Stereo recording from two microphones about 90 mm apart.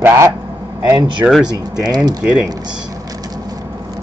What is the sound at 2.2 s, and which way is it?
Speech, 10° right (ahead or behind).